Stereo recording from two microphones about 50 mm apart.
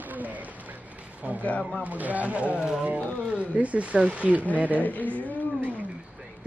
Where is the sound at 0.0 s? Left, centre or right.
Right.